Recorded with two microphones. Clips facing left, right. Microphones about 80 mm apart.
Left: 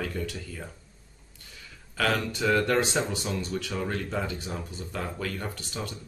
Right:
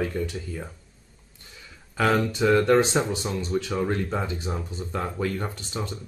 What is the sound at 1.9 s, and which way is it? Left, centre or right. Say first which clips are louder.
Speech: right 5 dB; right.